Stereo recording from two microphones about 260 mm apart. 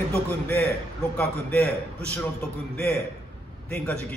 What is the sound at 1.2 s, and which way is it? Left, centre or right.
A man's voice, centre.